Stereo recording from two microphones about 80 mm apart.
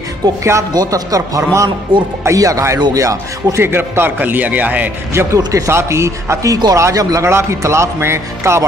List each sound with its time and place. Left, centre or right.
0.4 s a man's voice: right
1.9 s speech: right
2.2 s a man's voice: right
3.6 s a man's voice: right
5.5 s speech: right